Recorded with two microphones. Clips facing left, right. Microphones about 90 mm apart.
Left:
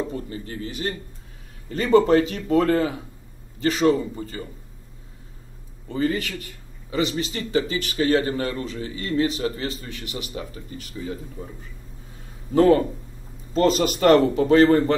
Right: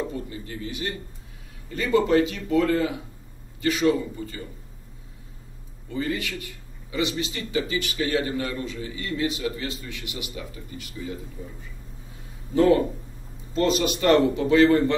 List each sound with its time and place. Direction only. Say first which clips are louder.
0.1 s a man's voice: left 2 dB; 35° left (ahead or behind)
5.9 s a man's voice: left 4 dB; 40° left (ahead or behind)
12.5 s a man's voice: left 2 dB; 35° left (ahead or behind)